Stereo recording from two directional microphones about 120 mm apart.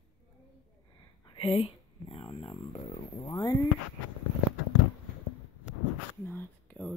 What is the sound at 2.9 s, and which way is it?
Speech, 65° left (ahead or behind).